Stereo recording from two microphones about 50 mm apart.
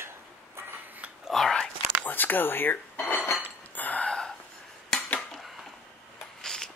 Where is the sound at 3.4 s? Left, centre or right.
Left.